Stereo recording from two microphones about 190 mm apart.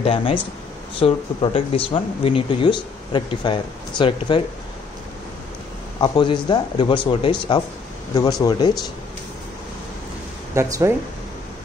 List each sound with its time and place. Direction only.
0.0 s speech: 30° left (ahead or behind)
5.9 s speech: 25° left (ahead or behind)
10.5 s speech: 15° right (ahead or behind)